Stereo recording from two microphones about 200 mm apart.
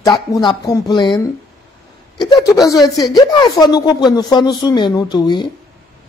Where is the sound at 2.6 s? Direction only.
15° left (ahead or behind).